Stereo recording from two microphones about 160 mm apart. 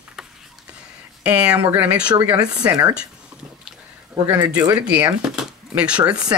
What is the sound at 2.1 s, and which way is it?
Speech, 20° right (ahead or behind).